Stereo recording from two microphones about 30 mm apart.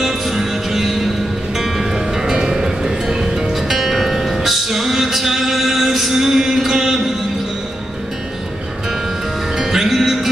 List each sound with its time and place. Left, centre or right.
0.0 s music: centre
9.6 s music: centre